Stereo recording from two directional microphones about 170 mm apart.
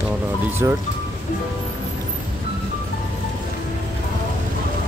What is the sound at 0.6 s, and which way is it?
Speech, 15° right (ahead or behind).